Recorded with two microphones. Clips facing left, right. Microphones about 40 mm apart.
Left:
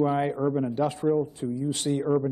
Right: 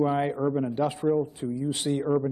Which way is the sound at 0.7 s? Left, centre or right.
Centre.